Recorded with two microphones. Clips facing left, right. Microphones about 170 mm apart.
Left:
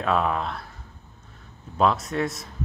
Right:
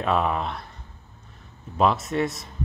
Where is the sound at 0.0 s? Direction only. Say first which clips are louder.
Even; 5° right (ahead or behind).